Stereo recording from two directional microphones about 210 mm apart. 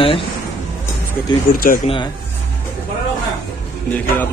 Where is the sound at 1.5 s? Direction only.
40° left (ahead or behind).